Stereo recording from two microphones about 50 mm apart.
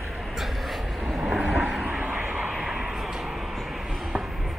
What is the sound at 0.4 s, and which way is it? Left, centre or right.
Vehicle, centre.